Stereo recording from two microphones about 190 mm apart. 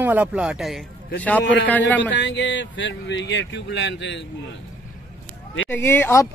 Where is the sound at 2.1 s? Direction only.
70° left (ahead or behind).